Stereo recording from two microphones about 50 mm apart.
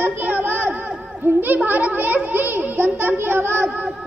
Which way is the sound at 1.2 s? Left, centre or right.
Right.